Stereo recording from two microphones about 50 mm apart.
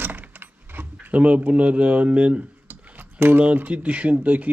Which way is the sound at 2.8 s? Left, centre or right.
Right.